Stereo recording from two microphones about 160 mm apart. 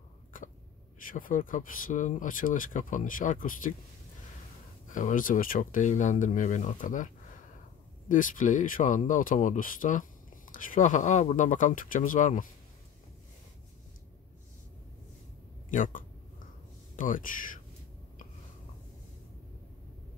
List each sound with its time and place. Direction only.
1.0 s speech: 55° left (ahead or behind)
4.8 s speech: 55° left (ahead or behind)
8.1 s speech: 55° left (ahead or behind)
15.7 s speech: 55° left (ahead or behind)